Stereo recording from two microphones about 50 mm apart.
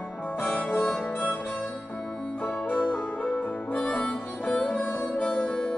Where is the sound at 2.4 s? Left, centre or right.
Left.